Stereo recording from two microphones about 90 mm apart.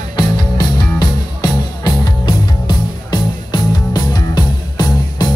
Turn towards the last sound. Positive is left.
turn(degrees=50)  # may be behind; listen again after turning